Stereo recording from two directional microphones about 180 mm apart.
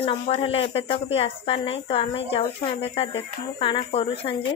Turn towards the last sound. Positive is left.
turn(degrees=30)  # may be behind; listen again after turning